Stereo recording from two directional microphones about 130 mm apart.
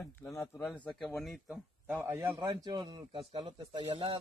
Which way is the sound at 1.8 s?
20° right (ahead or behind).